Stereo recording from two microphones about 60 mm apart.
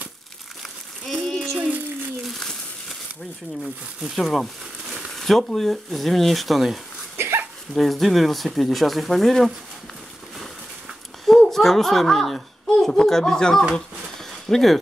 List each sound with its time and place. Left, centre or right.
0.6 s a sound: centre
2.2 s crumpling: centre
4.0 s speech: centre
7.2 s hiccup: right
7.7 s speech: centre
11.2 s a child's voice: centre